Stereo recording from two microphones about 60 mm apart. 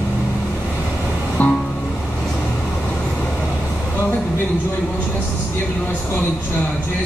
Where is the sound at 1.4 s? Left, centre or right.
Left.